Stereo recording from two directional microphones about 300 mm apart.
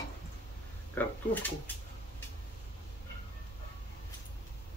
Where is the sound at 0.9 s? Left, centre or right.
Centre.